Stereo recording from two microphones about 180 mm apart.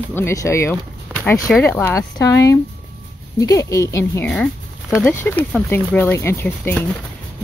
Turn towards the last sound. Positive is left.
turn(degrees=10)  # may be behind; listen again after turning